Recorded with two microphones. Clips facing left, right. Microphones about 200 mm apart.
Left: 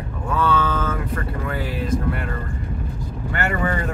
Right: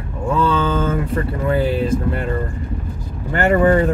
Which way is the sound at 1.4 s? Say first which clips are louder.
Right 8 dB; 30° right (ahead or behind).